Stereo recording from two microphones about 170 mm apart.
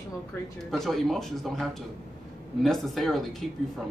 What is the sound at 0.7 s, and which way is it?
Speech, centre (ahead or behind).